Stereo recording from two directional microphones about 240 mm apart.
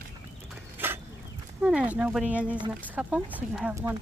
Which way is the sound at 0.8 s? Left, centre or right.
Centre.